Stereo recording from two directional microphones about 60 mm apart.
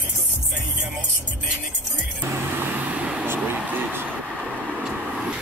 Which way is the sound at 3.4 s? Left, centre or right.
Right.